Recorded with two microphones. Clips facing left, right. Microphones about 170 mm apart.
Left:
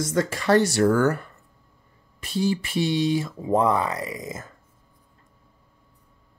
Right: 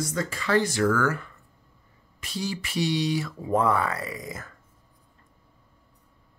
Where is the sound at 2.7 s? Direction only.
25° left (ahead or behind).